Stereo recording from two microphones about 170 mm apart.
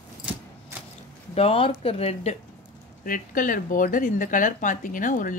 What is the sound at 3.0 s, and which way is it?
A woman's voice, 55° left (ahead or behind).